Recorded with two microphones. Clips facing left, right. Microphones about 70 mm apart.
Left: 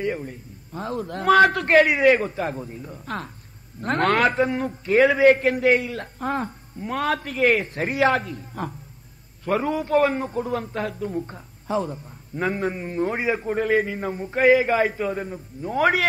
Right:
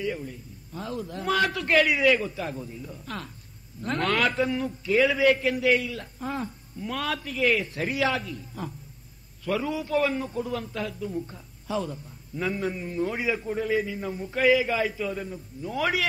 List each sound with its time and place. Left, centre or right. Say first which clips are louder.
0.0 s a man's voice: left 4 dB; left
11.6 s a man's voice: left 5 dB; left